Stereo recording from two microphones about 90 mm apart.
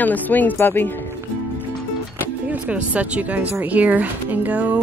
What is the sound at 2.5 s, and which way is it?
Speech, 15° right (ahead or behind).